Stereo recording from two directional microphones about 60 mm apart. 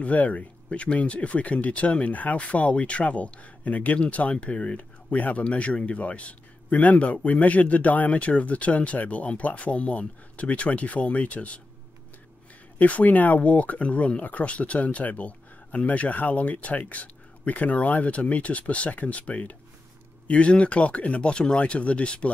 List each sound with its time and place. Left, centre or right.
0.0 s speech: left
12.7 s speech: left